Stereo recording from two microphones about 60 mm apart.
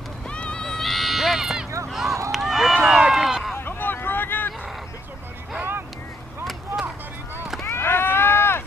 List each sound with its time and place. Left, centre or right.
0.3 s sheep: centre
1.9 s a sound: centre
3.5 s vehicle: left
5.6 s boat: right
7.6 s run: left